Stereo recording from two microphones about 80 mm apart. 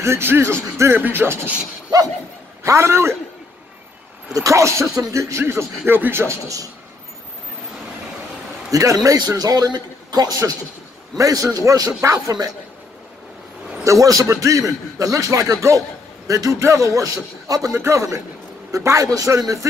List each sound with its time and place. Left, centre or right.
0.0 s speech: right
2.6 s speech: right
4.3 s speech: right
8.7 s a man's voice: right
13.8 s a man's voice: right